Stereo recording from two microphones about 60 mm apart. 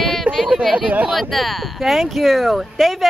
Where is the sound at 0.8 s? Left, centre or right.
Right.